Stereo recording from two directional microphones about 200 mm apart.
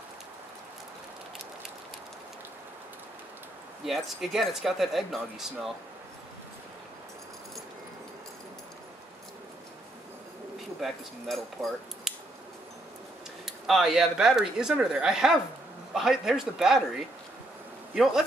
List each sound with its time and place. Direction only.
3.8 s speech: centre (ahead or behind)
10.8 s speech: centre (ahead or behind)
13.5 s speech: centre (ahead or behind)
17.9 s speech: centre (ahead or behind)